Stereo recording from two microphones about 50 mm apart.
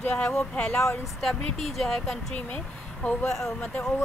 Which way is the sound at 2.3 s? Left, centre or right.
Left.